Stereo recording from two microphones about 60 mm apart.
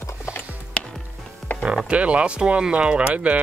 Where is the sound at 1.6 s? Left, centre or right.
Centre.